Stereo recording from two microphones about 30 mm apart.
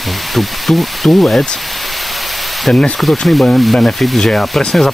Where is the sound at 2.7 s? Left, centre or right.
Left.